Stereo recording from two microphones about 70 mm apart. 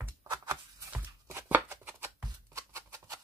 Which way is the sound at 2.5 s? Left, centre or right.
Right.